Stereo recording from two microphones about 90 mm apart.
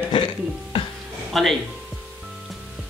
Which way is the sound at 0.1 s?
60° left (ahead or behind).